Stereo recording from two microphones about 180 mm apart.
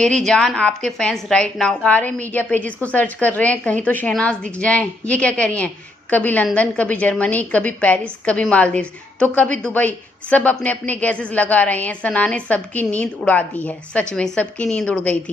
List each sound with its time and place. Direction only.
0.0 s a woman's voice: 5° left (ahead or behind)